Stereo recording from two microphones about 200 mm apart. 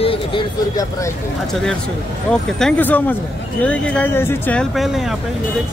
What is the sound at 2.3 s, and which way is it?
Speech, 5° left (ahead or behind).